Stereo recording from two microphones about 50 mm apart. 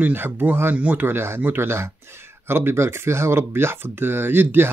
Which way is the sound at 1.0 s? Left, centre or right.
Right.